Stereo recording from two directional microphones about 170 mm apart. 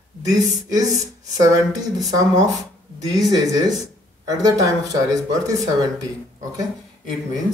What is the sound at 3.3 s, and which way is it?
Speech, 20° right (ahead or behind).